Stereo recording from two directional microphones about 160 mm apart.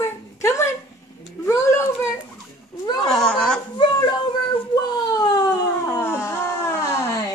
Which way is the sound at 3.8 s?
25° left (ahead or behind).